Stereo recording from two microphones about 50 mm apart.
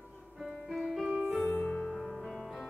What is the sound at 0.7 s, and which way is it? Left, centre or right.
Music, centre.